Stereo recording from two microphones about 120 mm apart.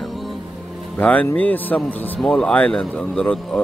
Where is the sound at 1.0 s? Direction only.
10° left (ahead or behind).